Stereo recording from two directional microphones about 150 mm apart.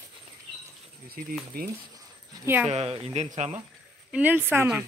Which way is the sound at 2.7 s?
45° right (ahead or behind).